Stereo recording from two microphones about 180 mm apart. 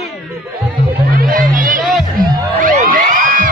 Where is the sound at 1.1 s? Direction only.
55° right (ahead or behind).